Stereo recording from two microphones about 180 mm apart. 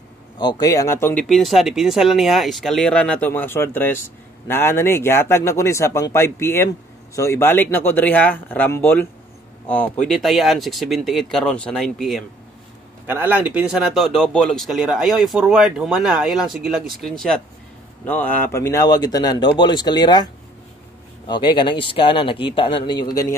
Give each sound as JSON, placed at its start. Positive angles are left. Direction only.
{"t": 0.4, "sound": "speech", "side_deg": 20}
{"t": 1.3, "sound": "speech", "side_deg": 0}
{"t": 10.0, "sound": "speech", "side_deg": 0}
{"t": 13.0, "sound": "speech", "side_deg": -10}
{"t": 21.3, "sound": "speech", "side_deg": 25}